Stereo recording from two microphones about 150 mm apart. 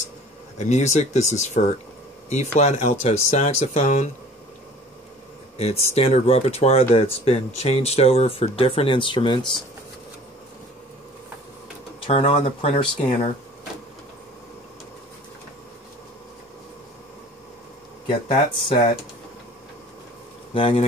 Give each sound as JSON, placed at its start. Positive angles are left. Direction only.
{"t": 0.6, "sound": "speech", "side_deg": 50}
{"t": 5.6, "sound": "speech", "side_deg": 45}
{"t": 12.1, "sound": "speech", "side_deg": 40}
{"t": 18.3, "sound": "speech", "side_deg": 35}
{"t": 20.5, "sound": "speech", "side_deg": 35}